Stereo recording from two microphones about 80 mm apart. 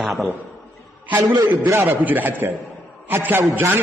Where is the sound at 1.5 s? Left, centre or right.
Right.